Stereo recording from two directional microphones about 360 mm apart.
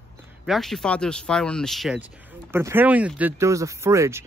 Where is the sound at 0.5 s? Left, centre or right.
Centre.